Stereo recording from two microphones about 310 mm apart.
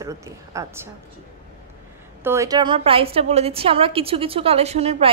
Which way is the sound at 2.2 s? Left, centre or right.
Centre.